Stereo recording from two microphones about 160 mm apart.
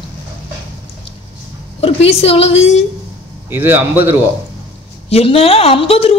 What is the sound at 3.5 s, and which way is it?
Speech, 15° right (ahead or behind).